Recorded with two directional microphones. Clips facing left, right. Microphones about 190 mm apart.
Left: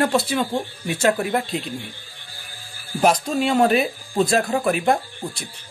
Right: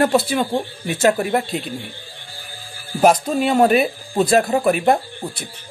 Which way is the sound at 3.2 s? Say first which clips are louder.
Right 2 dB; 5° right (ahead or behind).